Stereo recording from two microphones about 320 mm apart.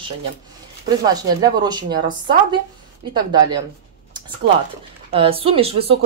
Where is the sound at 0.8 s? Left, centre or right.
Centre.